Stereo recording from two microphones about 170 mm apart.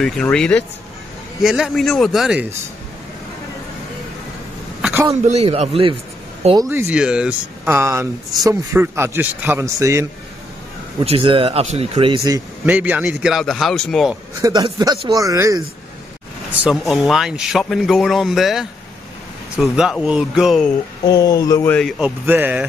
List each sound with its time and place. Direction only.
0.0 s speech: 5° left (ahead or behind)
5.2 s speech: 40° right (ahead or behind)
6.5 s a man's voice: 20° right (ahead or behind)
11.1 s speech: 35° right (ahead or behind)
12.3 s speech: 10° right (ahead or behind)
14.4 s speech: 25° right (ahead or behind)
16.6 s speech: centre (ahead or behind)
21.1 s speech: 20° left (ahead or behind)
21.6 s speech: 5° left (ahead or behind)